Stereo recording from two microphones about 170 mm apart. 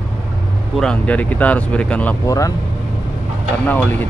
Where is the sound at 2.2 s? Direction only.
20° left (ahead or behind).